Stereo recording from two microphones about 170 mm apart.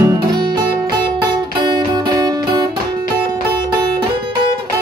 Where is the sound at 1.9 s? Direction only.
20° right (ahead or behind).